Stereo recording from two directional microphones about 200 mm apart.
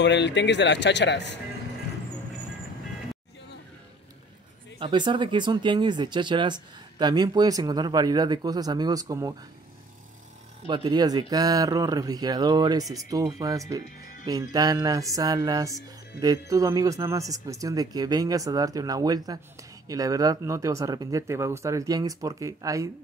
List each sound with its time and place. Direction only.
0.0 s speech: 60° left (ahead or behind)
4.7 s speech: 25° right (ahead or behind)
10.7 s speech: 20° right (ahead or behind)